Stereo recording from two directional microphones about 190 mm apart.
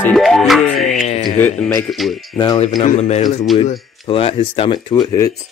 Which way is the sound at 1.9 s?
Centre (ahead or behind).